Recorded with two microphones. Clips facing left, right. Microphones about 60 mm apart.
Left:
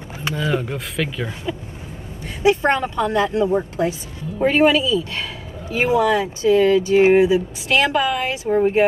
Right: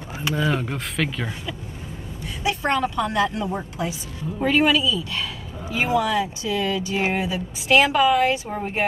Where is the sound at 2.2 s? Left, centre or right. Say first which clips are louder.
Left 8 dB; left.